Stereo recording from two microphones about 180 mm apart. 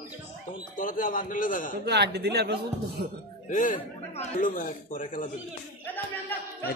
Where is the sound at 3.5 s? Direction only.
45° left (ahead or behind).